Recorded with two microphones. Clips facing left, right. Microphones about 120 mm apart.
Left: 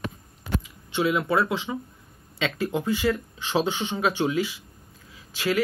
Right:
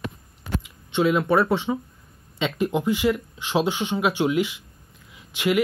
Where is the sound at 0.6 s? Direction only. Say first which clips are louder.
Right 4 dB; 20° right (ahead or behind).